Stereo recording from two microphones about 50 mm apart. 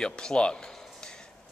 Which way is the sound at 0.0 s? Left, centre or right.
Centre.